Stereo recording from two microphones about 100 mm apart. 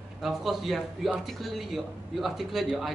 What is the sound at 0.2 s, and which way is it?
A man's voice, centre (ahead or behind).